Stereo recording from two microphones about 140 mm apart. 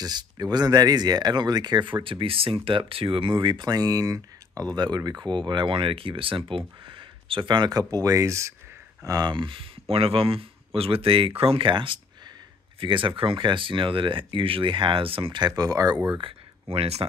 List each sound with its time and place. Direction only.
0.0 s speech: 30° right (ahead or behind)
16.2 s speech: 40° right (ahead or behind)